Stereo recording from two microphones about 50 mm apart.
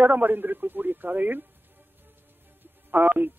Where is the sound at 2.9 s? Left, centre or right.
Right.